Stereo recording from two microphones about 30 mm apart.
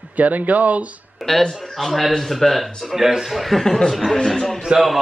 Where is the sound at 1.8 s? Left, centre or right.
Centre.